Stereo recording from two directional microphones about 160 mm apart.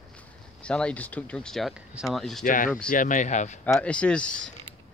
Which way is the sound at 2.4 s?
55° left (ahead or behind).